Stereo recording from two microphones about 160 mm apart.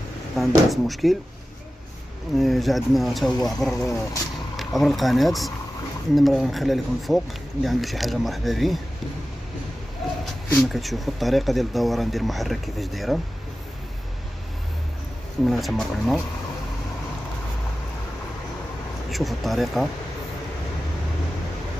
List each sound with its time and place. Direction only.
0.4 s speech: centre (ahead or behind)
2.3 s speech: centre (ahead or behind)
3.7 s speech: 20° left (ahead or behind)
4.6 s speech: centre (ahead or behind)
10.2 s speech: centre (ahead or behind)
15.4 s speech: centre (ahead or behind)
19.0 s speech: centre (ahead or behind)